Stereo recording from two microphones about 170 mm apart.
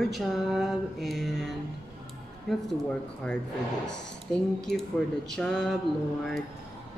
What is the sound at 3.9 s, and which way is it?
Speech, 5° left (ahead or behind).